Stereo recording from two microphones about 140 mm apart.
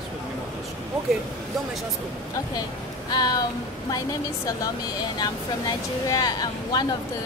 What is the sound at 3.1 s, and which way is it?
Speech, 30° left (ahead or behind).